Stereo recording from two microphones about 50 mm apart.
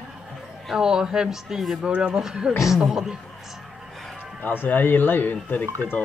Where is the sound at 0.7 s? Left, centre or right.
Centre.